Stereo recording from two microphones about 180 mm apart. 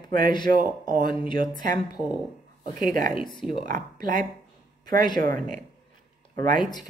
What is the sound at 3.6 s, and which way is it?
Speech, 45° right (ahead or behind).